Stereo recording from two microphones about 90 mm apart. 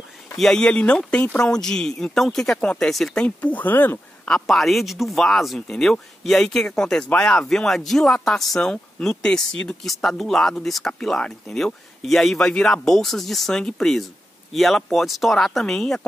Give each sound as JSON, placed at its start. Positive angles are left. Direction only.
{"t": 0.4, "sound": "speech", "side_deg": 10}
{"t": 3.3, "sound": "speech", "side_deg": 15}
{"t": 4.3, "sound": "speech", "side_deg": 0}